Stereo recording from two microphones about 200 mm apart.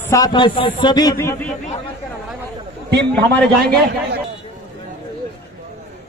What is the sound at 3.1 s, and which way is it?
Speech, 5° left (ahead or behind).